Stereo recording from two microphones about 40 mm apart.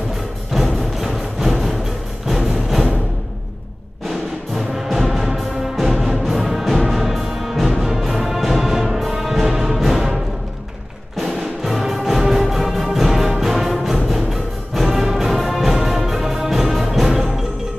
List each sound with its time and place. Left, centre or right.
0.7 s music: centre
4.1 s music: centre
11.1 s music: centre